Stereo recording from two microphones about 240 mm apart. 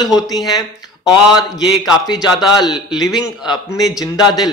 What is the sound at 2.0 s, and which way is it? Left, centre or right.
A man's voice, centre.